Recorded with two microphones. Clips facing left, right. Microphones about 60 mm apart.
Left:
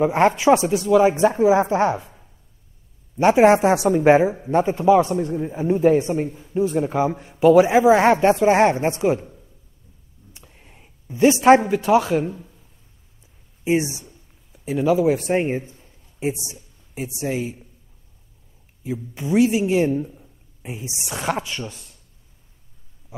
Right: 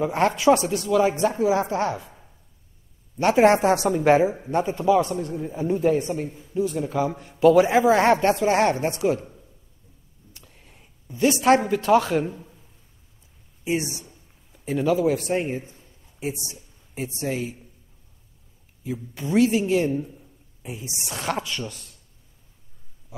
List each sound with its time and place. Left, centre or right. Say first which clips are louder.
0.0 s a man's voice: left 3 dB; left
3.2 s a man's voice: left 3 dB; centre
10.3 s a man's voice: left 2 dB; centre
14.0 s a sound: left 3 dB; centre
15.0 s a man's voice: left 3 dB; left
16.9 s a man's voice: left 2 dB; centre
18.9 s a man's voice: left 4 dB; centre